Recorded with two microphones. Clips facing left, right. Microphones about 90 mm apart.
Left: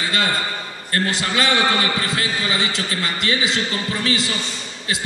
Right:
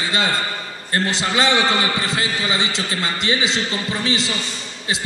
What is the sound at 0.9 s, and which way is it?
A man's voice, 25° right (ahead or behind).